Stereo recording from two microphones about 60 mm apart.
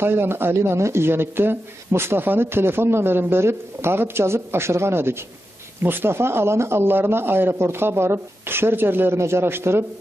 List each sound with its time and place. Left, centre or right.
0.0 s speech: right